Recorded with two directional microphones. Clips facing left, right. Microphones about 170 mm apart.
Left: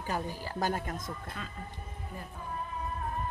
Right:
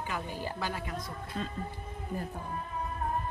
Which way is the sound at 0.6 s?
45° left (ahead or behind).